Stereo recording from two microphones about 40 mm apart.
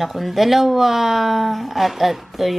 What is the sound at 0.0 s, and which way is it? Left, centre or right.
Speech, centre.